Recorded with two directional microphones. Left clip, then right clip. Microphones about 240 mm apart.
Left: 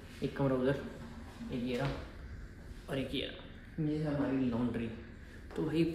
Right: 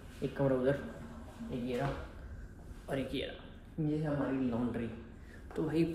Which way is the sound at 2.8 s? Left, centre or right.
Centre.